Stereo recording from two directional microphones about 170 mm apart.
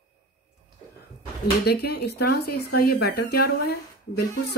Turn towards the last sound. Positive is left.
turn(degrees=70)  # may be behind; listen again after turning